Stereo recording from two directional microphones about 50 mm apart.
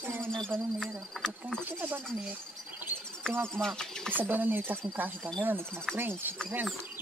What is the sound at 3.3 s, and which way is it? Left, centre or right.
Speech, right.